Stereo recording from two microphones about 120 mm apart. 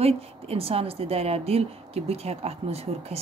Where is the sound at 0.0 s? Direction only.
55° right (ahead or behind).